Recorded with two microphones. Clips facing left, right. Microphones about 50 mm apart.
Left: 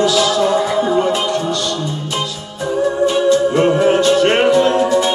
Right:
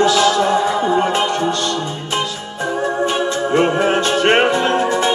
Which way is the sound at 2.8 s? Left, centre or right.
Right.